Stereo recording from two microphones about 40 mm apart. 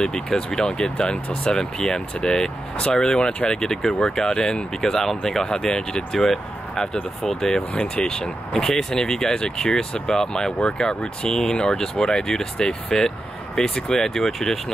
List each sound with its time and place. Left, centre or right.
0.0 s speech: centre